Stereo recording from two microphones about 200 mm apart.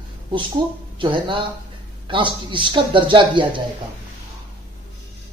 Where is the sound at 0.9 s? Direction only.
25° right (ahead or behind).